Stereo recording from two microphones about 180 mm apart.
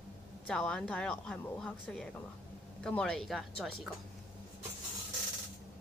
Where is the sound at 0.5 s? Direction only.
5° left (ahead or behind).